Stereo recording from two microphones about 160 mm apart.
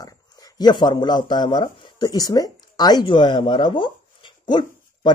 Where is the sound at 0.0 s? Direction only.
25° left (ahead or behind).